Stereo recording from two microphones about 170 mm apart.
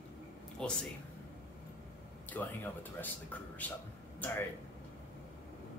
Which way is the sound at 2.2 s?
10° left (ahead or behind).